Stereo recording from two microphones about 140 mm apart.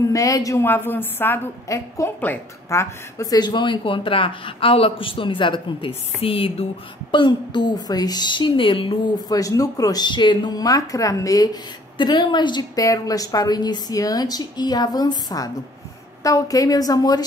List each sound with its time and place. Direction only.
0.1 s a woman's voice: 25° left (ahead or behind)
9.3 s a woman's voice: 25° left (ahead or behind)